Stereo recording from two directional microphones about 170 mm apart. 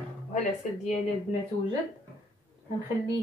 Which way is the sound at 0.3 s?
45° left (ahead or behind).